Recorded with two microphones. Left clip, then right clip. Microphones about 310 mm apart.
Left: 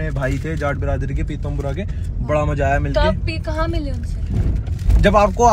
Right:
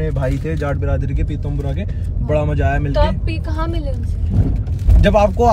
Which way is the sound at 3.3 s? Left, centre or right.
Centre.